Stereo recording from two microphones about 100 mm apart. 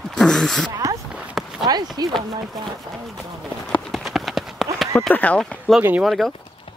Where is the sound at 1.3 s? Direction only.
5° right (ahead or behind).